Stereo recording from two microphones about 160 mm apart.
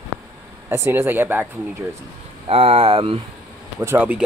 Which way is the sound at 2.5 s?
40° right (ahead or behind).